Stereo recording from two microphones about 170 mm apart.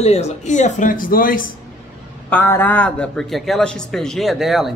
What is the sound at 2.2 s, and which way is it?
A man's voice, 10° left (ahead or behind).